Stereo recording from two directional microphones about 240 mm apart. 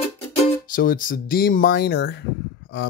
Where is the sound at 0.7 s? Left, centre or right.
Left.